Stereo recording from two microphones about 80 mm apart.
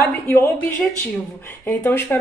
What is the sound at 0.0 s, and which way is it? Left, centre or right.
A woman's voice, left.